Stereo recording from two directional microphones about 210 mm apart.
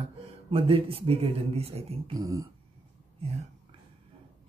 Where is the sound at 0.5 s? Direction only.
25° right (ahead or behind).